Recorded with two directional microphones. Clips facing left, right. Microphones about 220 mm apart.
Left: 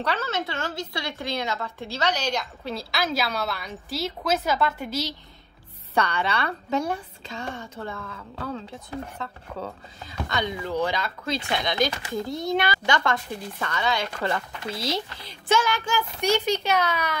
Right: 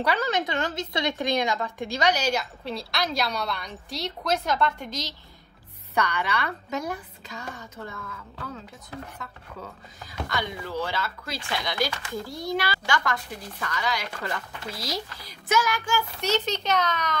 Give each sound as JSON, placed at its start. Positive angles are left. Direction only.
{"t": 0.0, "sound": "a woman's voice", "side_deg": -15}
{"t": 5.9, "sound": "speech", "side_deg": 30}
{"t": 9.9, "sound": "speech", "side_deg": 25}
{"t": 16.2, "sound": "a child's voice", "side_deg": 10}